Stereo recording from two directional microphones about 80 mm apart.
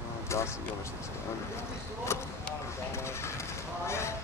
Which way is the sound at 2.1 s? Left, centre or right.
Left.